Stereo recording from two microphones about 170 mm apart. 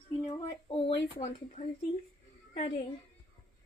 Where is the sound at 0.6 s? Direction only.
35° left (ahead or behind).